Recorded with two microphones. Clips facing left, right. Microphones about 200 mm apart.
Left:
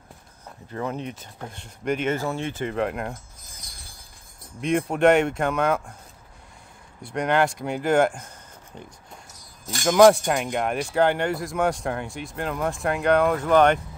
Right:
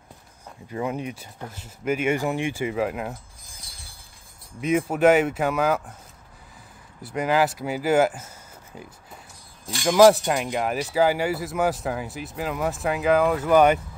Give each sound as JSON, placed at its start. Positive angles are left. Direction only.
{"t": 0.7, "sound": "speech", "side_deg": -10}
{"t": 7.0, "sound": "speech", "side_deg": -5}
{"t": 9.3, "sound": "a sound", "side_deg": 45}
{"t": 9.8, "sound": "speech", "side_deg": 0}